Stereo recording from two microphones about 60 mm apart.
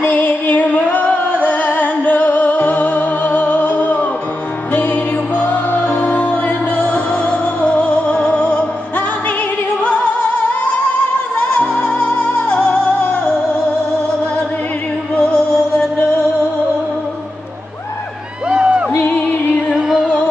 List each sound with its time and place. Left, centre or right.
0.1 s music: left
5.3 s music: left
11.3 s music: left
15.1 s music: centre
18.5 s crowd: centre
18.9 s music: left
19.7 s female singing: centre